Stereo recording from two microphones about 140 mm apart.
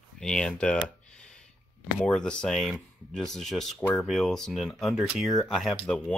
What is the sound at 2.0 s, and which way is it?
Speech, 5° left (ahead or behind).